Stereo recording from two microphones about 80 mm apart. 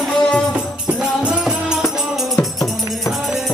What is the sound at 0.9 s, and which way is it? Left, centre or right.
Music, centre.